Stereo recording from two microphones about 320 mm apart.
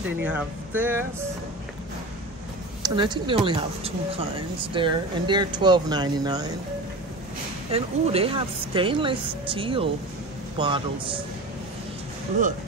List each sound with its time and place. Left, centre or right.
0.2 s speech: centre
2.8 s speech: centre
7.7 s speech: centre